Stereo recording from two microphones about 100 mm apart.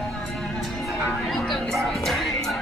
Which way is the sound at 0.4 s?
Centre (ahead or behind).